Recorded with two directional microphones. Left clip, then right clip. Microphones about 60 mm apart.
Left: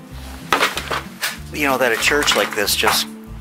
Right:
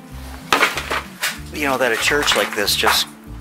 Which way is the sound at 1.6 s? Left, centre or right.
Left.